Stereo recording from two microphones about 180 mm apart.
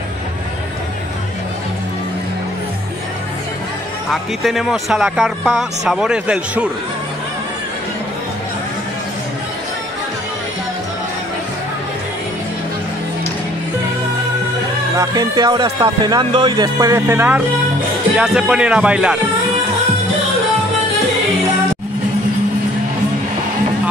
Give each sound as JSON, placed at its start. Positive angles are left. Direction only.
{"t": 4.1, "sound": "speech", "side_deg": 0}
{"t": 15.0, "sound": "speech", "side_deg": -20}